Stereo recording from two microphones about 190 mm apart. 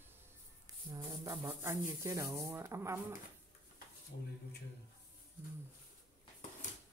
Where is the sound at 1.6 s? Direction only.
15° right (ahead or behind).